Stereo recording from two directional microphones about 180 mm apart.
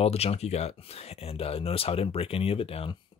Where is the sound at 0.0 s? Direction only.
35° left (ahead or behind).